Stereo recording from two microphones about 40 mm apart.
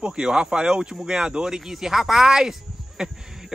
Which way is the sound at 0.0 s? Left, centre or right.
Right.